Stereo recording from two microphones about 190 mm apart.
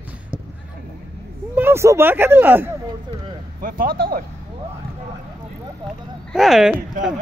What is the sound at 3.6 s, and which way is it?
Speech, 50° right (ahead or behind).